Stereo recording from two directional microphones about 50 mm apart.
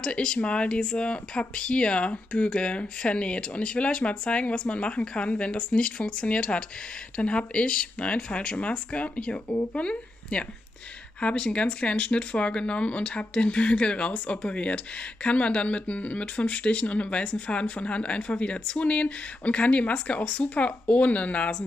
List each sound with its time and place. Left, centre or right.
0.0 s a woman's voice: centre